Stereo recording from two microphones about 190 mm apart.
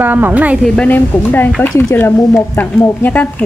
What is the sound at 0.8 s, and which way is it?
Speech, 10° left (ahead or behind).